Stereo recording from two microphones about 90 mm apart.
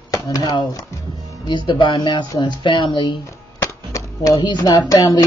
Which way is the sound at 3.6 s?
35° left (ahead or behind).